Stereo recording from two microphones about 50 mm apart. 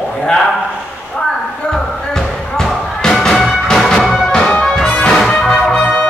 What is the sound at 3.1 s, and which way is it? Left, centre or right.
Music, centre.